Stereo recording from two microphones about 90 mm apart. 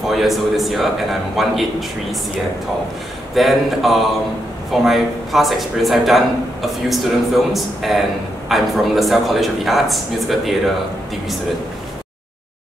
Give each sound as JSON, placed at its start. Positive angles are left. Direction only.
{"t": 0.1, "sound": "speech", "side_deg": 0}
{"t": 3.3, "sound": "speech", "side_deg": 0}